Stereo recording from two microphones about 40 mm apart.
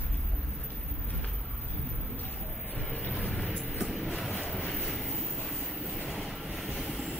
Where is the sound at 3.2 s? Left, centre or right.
Left.